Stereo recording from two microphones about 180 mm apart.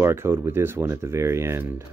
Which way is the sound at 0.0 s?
15° right (ahead or behind).